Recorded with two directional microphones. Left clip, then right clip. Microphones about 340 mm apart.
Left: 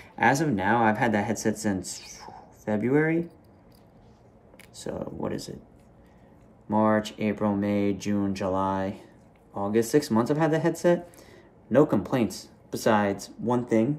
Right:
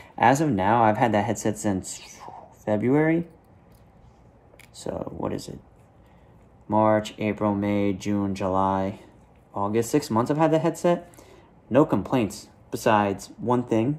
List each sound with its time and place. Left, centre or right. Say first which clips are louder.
0.1 s speech: right 3 dB; centre
4.6 s speech: right 2 dB; centre
6.7 s speech: right 3 dB; centre